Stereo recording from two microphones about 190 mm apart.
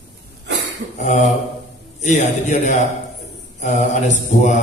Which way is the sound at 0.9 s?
35° left (ahead or behind).